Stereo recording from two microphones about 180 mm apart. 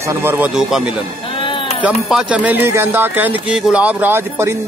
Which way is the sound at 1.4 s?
30° left (ahead or behind).